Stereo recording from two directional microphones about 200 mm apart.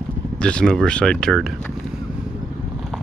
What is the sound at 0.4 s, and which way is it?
Speech, 5° left (ahead or behind).